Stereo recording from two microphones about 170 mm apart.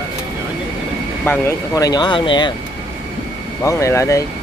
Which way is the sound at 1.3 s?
20° left (ahead or behind).